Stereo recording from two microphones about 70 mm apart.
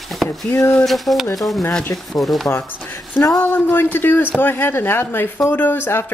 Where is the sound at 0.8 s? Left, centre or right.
Centre.